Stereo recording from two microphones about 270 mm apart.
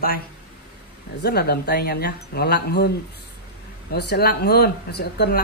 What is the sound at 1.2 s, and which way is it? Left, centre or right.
Speech, left.